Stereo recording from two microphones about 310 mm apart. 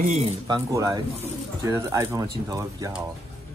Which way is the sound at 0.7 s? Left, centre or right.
Centre.